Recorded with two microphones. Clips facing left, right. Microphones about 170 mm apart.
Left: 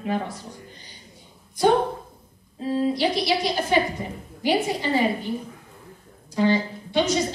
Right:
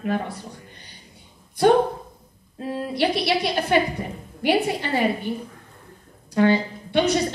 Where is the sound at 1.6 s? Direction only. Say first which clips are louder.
Right 2 dB; 60° right (ahead or behind).